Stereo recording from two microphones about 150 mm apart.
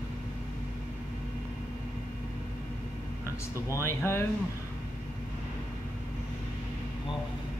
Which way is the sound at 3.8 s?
15° left (ahead or behind).